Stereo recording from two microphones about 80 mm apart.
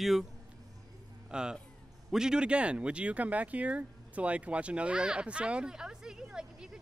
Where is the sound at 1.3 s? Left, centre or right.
Centre.